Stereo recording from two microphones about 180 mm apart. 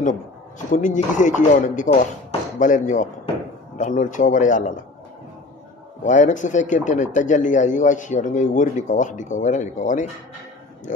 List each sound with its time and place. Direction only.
0.7 s speech: 45° left (ahead or behind)
6.0 s speech: 45° left (ahead or behind)